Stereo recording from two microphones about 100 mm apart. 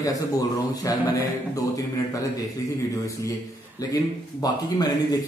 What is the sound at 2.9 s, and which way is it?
A man's voice, 35° left (ahead or behind).